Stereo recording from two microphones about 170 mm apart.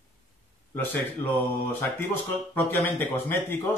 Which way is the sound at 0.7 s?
15° left (ahead or behind).